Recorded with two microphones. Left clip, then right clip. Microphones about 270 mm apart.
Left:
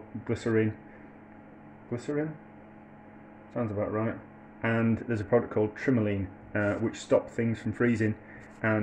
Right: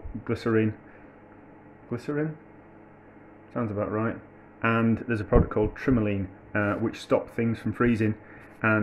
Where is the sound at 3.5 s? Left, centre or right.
Centre.